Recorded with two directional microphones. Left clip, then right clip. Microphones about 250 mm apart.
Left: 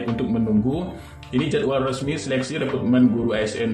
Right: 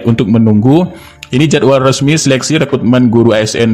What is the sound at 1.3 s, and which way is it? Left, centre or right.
Speech, right.